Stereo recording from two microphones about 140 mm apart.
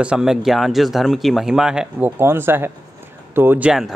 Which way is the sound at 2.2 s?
15° right (ahead or behind).